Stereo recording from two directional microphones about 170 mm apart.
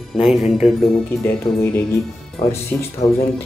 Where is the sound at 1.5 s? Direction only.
30° left (ahead or behind).